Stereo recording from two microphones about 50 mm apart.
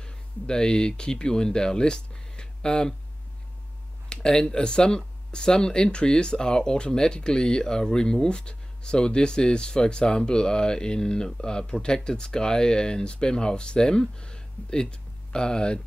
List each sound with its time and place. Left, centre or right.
0.0 s speech: centre
4.1 s speech: centre